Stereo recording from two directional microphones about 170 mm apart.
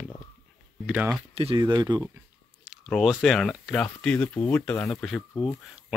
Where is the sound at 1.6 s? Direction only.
25° right (ahead or behind).